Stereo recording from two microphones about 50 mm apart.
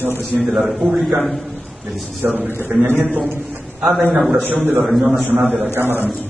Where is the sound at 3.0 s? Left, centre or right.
Right.